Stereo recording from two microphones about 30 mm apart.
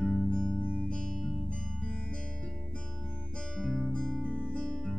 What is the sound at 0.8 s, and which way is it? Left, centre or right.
Music, left.